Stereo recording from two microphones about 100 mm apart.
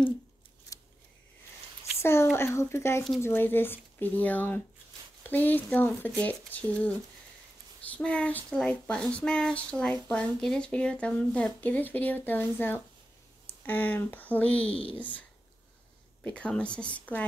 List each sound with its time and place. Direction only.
2.0 s a sound: 25° left (ahead or behind)
2.3 s speech: 25° left (ahead or behind)
7.9 s speech: 10° left (ahead or behind)
16.3 s speech: 10° left (ahead or behind)